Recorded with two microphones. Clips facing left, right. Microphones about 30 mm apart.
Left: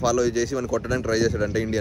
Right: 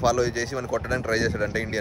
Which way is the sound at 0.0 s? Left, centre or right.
Right.